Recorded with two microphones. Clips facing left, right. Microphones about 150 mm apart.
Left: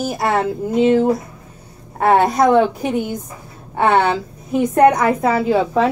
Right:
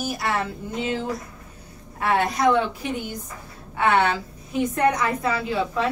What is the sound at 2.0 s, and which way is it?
Speech, 50° left (ahead or behind).